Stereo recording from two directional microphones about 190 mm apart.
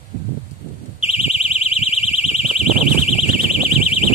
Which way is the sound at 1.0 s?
30° left (ahead or behind).